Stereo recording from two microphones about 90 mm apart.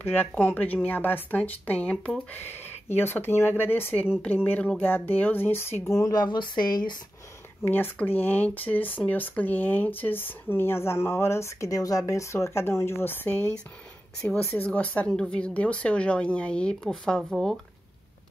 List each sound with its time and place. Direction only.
0.1 s speech: 20° left (ahead or behind)
5.9 s speech: 45° left (ahead or behind)
7.6 s speech: 20° left (ahead or behind); by 17.6 s centre (ahead or behind)